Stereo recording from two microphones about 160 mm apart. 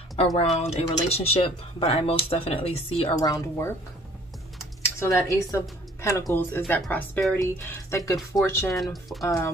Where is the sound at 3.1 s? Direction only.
25° left (ahead or behind).